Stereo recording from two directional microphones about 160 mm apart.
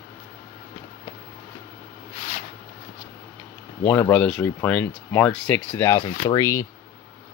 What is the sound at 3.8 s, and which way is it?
Speech, 10° left (ahead or behind).